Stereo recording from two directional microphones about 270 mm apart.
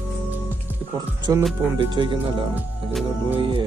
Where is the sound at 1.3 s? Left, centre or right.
Centre.